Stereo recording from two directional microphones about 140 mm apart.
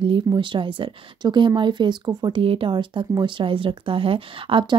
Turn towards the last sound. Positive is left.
turn(degrees=-35)  # may be behind; listen again after turning